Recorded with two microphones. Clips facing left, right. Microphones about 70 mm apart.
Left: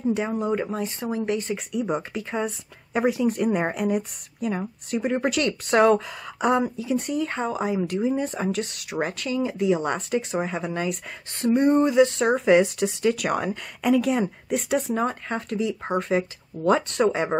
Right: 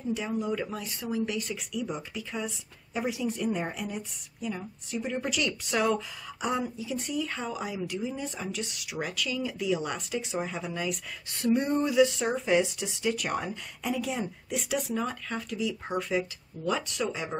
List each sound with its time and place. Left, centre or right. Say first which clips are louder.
0.1 s speech: left 3 dB; left
0.4 s speech: left 6 dB; left
11.4 s a sound: left 7 dB; left
12.1 s speech: left 8 dB; left